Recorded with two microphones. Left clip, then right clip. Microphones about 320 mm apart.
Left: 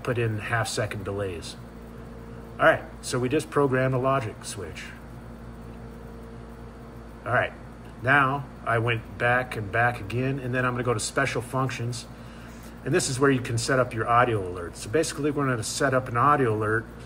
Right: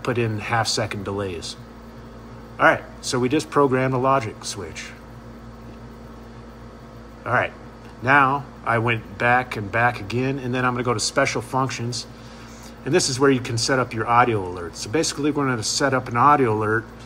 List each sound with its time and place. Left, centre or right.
0.0 s speech: centre
7.2 s speech: centre